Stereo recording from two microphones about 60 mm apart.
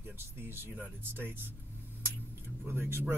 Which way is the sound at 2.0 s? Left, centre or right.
Right.